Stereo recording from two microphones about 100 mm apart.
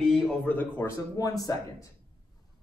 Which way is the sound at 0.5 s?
20° left (ahead or behind).